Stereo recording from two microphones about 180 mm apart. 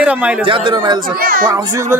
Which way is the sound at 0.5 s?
25° right (ahead or behind).